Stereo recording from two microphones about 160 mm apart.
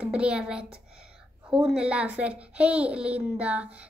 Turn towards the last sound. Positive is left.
turn(degrees=-10)  # may be behind; listen again after turning